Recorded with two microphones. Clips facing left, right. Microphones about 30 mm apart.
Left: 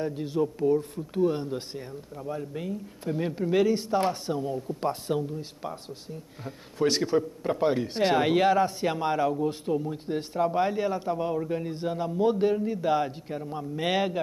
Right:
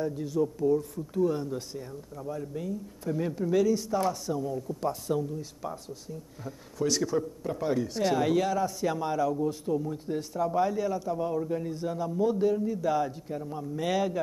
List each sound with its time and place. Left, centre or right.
0.0 s speech: left